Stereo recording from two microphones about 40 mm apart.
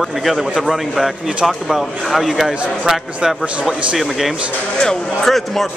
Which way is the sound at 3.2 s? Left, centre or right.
Right.